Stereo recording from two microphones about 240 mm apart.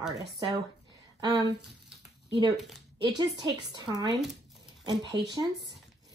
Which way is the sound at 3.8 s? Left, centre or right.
Centre.